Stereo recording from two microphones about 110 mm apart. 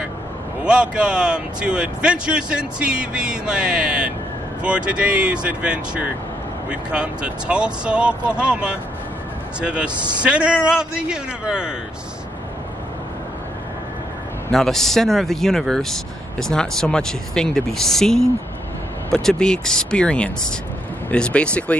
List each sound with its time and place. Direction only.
0.7 s speech: 10° right (ahead or behind)
9.9 s a man's voice: 40° right (ahead or behind)
10.2 s speech: 10° right (ahead or behind)
14.5 s speech: 5° left (ahead or behind)